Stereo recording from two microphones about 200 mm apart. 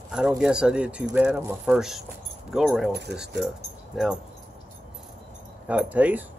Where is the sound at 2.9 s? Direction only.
55° right (ahead or behind).